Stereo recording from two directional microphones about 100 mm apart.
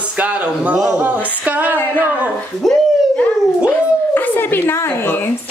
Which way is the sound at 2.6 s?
Centre (ahead or behind).